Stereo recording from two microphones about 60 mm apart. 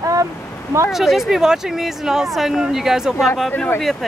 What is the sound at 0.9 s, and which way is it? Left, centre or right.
Speech, centre.